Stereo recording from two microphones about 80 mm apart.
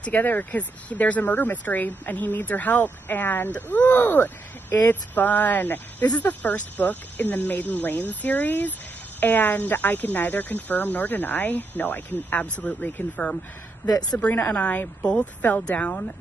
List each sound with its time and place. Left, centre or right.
0.0 s speech: left